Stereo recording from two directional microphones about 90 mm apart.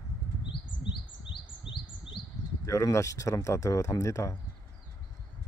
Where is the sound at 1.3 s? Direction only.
55° left (ahead or behind).